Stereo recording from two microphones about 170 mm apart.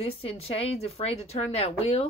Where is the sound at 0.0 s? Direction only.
35° left (ahead or behind).